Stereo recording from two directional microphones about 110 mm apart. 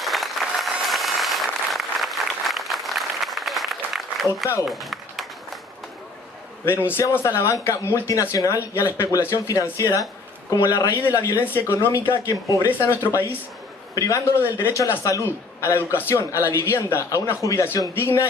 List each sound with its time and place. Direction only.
0.0 s applause: centre (ahead or behind)
6.6 s a man's voice: 20° left (ahead or behind)